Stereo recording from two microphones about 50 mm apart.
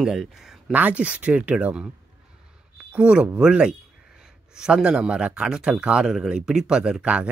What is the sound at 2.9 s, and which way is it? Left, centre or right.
Speech, right.